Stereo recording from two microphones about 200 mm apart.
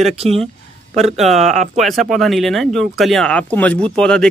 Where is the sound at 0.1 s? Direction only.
30° right (ahead or behind).